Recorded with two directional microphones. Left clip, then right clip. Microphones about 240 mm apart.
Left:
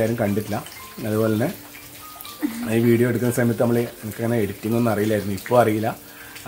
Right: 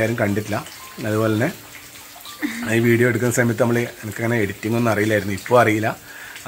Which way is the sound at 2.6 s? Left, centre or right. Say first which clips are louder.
Right 2 dB; centre.